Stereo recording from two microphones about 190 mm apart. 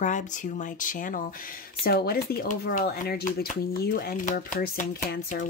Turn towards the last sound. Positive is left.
turn(degrees=45)  # may be behind; listen again after turning